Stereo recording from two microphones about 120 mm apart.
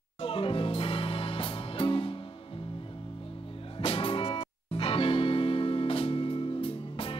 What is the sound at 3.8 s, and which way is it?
Music, 50° left (ahead or behind).